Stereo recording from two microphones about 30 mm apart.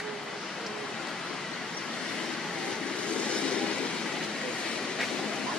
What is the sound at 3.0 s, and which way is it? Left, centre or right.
Train, left.